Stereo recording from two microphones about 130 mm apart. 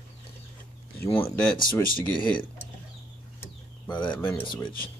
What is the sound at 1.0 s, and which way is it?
Speech, 20° left (ahead or behind).